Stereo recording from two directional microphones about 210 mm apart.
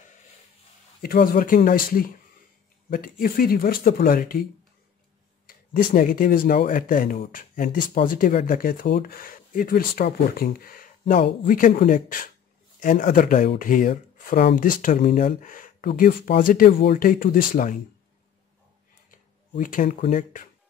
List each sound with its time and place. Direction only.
1.0 s speech: 45° left (ahead or behind)
5.5 s a sound: 40° left (ahead or behind)
5.9 s speech: 40° left (ahead or behind)
19.5 s speech: 35° left (ahead or behind)